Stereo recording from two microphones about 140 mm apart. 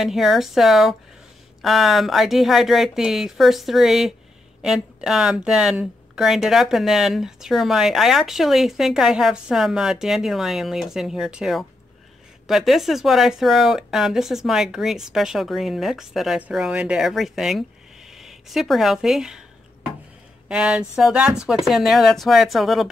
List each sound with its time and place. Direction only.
0.0 s speech: centre (ahead or behind)
20.4 s speech: 5° right (ahead or behind)